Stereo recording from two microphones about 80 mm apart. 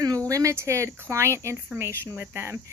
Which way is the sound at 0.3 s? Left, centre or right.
Right.